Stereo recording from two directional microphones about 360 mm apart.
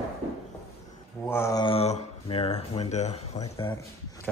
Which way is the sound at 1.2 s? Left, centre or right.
Centre.